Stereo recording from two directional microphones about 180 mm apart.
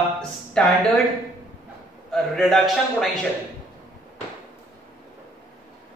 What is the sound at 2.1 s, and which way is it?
Speech, centre (ahead or behind).